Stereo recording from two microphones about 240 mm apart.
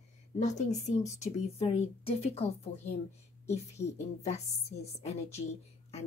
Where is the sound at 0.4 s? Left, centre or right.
Left.